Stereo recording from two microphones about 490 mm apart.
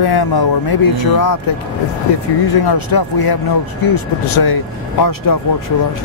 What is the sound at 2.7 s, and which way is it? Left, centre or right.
Speech, left.